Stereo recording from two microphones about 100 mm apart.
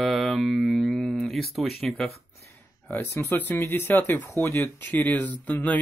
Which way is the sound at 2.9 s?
25° left (ahead or behind).